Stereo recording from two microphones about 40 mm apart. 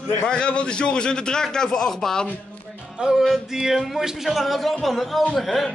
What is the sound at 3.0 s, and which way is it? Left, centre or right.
Music, centre.